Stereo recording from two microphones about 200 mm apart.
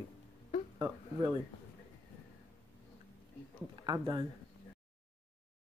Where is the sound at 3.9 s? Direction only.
20° right (ahead or behind).